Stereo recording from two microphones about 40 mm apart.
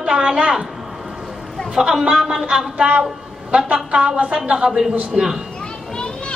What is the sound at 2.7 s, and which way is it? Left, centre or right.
A woman's voice, right.